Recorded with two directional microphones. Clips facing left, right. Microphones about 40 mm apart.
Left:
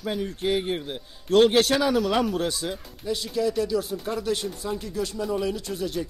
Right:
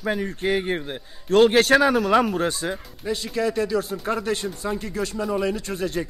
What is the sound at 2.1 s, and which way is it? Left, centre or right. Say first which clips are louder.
Speech: right 5 dB; right.